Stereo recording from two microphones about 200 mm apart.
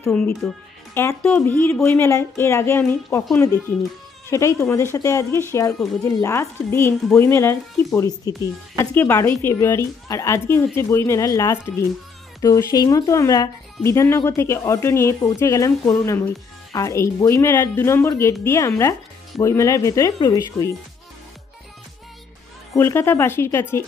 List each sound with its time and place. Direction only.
0.0 s speech: 15° left (ahead or behind)
22.8 s speech: 10° left (ahead or behind)